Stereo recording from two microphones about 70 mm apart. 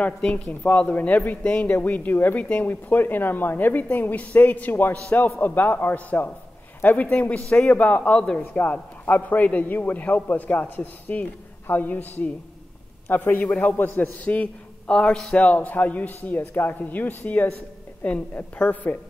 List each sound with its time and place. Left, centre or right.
0.2 s a man's voice: centre
4.3 s a man's voice: left